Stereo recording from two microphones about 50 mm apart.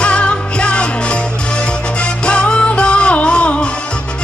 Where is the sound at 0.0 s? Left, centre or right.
Left.